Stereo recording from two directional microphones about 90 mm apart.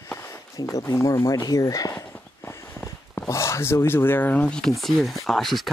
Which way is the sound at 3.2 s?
35° left (ahead or behind).